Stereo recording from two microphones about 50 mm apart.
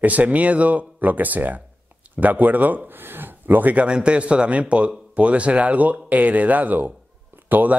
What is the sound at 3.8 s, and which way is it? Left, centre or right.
A man's voice, centre.